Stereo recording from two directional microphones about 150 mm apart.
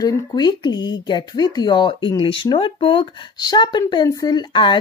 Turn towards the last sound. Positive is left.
turn(degrees=30)  # may be behind; listen again after turning